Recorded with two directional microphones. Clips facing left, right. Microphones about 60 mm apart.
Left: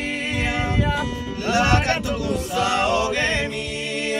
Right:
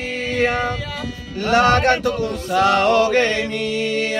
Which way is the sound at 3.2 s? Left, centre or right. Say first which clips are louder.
Right 2 dB; left.